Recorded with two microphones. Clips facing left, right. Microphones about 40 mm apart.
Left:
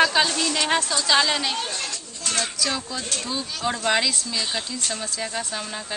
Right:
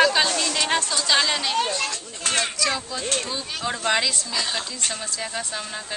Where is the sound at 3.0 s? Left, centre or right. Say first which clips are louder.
Right 3 dB; right.